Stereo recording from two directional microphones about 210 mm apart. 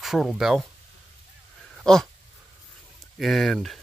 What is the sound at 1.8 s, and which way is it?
Speech, centre (ahead or behind).